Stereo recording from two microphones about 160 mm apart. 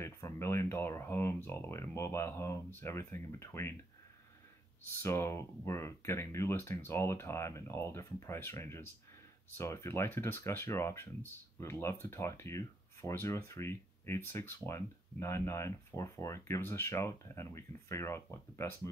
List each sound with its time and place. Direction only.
0.0 s speech: 15° left (ahead or behind)
5.0 s speech: 15° left (ahead or behind)